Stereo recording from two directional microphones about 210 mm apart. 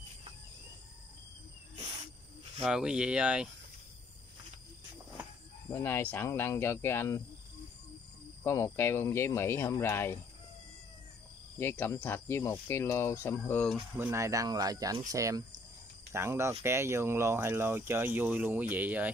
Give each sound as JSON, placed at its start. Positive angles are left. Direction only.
{"t": 2.6, "sound": "speech", "side_deg": -5}
{"t": 5.7, "sound": "speech", "side_deg": 10}
{"t": 8.5, "sound": "speech", "side_deg": 10}
{"t": 11.5, "sound": "speech", "side_deg": 10}
{"t": 13.9, "sound": "speech", "side_deg": -15}